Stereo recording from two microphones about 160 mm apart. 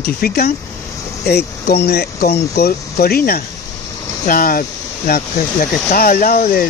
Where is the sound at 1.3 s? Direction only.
90° left; by 3.4 s 70° left (ahead or behind).